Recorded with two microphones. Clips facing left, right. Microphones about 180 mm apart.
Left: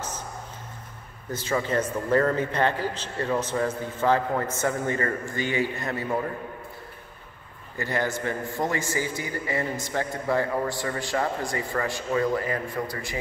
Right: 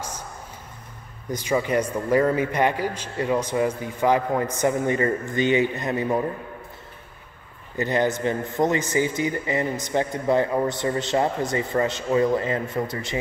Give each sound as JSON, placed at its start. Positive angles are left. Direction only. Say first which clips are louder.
{"t": 1.3, "sound": "a man's voice", "louder": "right 3 dB", "side_deg": -15}
{"t": 7.7, "sound": "a man's voice", "louder": "right 5 dB", "side_deg": -20}